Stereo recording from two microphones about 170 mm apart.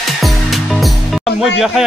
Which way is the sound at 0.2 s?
Centre (ahead or behind).